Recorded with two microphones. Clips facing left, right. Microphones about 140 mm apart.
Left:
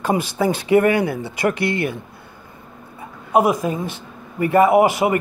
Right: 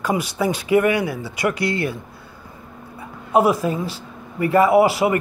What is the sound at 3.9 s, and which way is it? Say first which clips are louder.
Speech: even; 25° left (ahead or behind).